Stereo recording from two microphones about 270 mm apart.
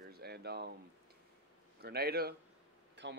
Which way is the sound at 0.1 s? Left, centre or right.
Right.